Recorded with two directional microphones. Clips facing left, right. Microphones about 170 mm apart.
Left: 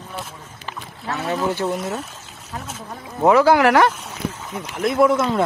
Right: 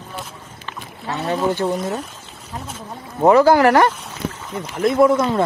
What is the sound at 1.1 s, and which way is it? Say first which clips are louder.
Speech: right 2 dB; centre (ahead or behind).